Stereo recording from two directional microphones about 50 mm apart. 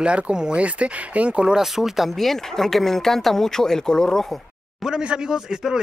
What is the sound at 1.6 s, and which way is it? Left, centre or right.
Speech, centre.